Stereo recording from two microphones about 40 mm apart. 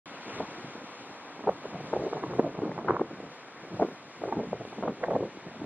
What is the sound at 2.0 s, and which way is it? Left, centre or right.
Boat, right.